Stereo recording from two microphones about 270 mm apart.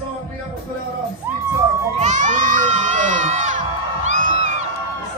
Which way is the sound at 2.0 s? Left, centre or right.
Right.